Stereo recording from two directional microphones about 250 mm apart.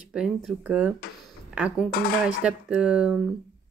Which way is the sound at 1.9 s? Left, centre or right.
Left.